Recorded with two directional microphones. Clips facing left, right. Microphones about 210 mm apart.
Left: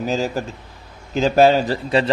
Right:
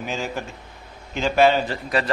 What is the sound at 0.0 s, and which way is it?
A man's voice, 35° left (ahead or behind).